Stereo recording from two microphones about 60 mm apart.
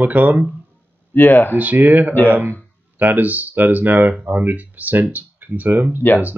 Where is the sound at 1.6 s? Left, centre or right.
Right.